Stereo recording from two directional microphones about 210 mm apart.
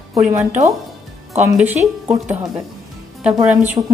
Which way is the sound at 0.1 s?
15° right (ahead or behind).